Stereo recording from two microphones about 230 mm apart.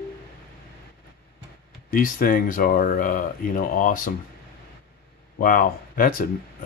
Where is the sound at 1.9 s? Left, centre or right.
Left.